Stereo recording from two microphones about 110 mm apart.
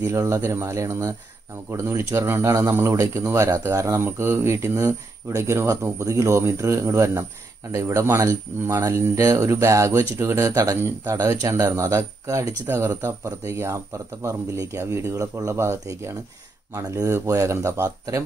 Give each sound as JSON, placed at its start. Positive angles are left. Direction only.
{"t": 0.0, "sound": "speech", "side_deg": -25}